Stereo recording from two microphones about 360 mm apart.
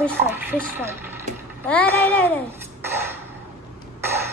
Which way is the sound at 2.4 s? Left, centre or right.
Centre.